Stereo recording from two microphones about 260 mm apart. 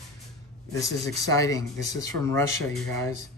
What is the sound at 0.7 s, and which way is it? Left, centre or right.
Speech, centre.